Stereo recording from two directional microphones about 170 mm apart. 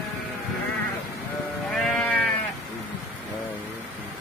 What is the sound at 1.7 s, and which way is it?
Sheep, 5° left (ahead or behind).